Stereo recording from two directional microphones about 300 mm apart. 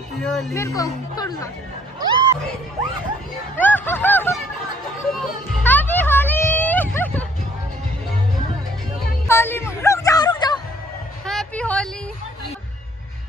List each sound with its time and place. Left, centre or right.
0.2 s speech: centre
2.0 s a sound: centre
3.5 s speech: centre
5.6 s music: centre
9.3 s a sound: centre
11.2 s vehicle: centre